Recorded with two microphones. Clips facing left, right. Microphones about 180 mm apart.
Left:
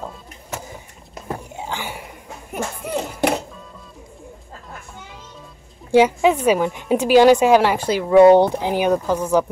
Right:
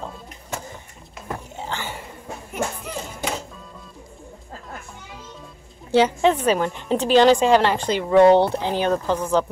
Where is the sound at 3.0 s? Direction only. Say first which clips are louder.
Left 9 dB; 65° left (ahead or behind).